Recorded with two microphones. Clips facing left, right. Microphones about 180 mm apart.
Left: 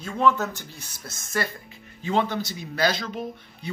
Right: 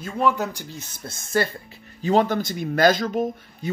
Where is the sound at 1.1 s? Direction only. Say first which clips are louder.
Right 6 dB; 30° right (ahead or behind).